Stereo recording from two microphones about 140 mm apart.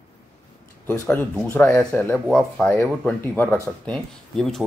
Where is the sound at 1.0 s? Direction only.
15° left (ahead or behind).